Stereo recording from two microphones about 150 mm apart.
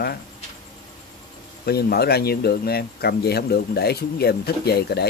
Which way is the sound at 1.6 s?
90° left.